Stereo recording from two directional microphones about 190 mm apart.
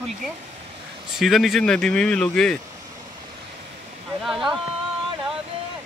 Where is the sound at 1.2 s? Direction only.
Centre (ahead or behind).